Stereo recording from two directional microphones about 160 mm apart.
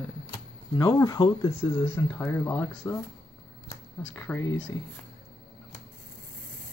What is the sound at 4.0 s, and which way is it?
Speech, 10° left (ahead or behind).